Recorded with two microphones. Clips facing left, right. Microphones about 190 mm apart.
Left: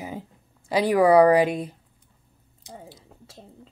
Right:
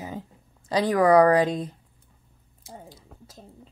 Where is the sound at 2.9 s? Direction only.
25° left (ahead or behind).